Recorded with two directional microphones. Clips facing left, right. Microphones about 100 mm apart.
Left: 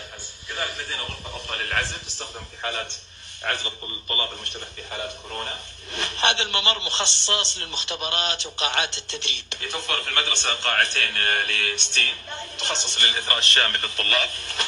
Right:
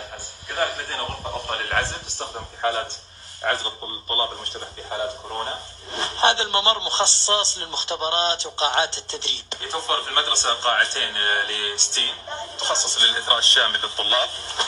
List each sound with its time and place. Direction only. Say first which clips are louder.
0.5 s a man's voice: right 6 dB; 40° right (ahead or behind)